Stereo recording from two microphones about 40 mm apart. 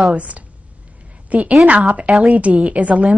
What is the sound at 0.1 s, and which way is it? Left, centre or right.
A woman's voice, right.